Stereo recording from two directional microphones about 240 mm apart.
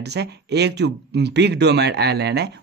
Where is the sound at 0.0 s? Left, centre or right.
Right.